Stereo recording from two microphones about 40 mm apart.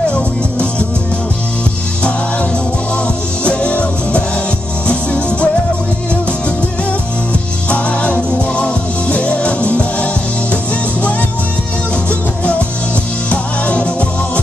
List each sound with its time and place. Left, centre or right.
0.1 s music: left
3.4 s music: left
7.7 s music: left
13.3 s music: left